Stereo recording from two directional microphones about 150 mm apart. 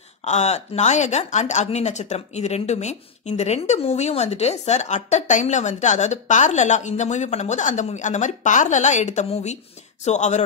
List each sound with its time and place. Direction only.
0.2 s speech: 50° left (ahead or behind)